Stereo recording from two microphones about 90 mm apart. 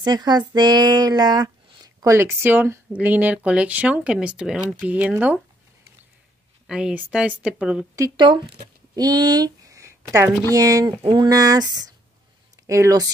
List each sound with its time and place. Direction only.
0.0 s speech: 50° right (ahead or behind); by 5.4 s 20° right (ahead or behind)
6.7 s speech: 10° right (ahead or behind)
8.9 s a woman's voice: 45° right (ahead or behind)
12.6 s speech: 35° right (ahead or behind)